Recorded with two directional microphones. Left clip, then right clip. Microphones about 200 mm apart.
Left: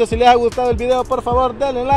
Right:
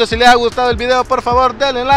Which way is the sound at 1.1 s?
45° right (ahead or behind).